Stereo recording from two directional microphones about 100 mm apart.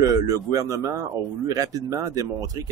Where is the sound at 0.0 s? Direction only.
35° right (ahead or behind).